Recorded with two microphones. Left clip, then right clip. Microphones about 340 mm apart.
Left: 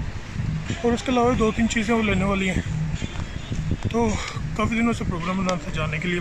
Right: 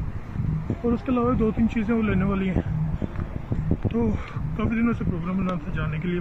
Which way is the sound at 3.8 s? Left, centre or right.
Right.